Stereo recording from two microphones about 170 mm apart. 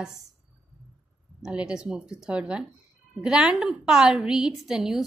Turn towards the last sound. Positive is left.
turn(degrees=-5)  # may be behind; listen again after turning